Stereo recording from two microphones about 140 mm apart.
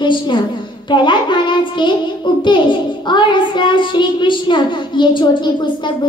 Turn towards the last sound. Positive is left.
turn(degrees=30)  # may be behind; listen again after turning